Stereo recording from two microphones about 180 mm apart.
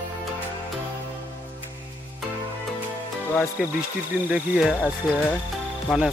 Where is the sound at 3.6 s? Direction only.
Centre (ahead or behind).